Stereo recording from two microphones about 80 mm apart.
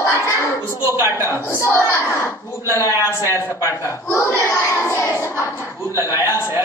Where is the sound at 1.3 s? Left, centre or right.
Left.